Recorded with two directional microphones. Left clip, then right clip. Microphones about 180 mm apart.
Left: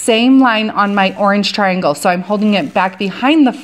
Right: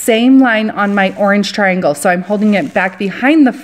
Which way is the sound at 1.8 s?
20° right (ahead or behind).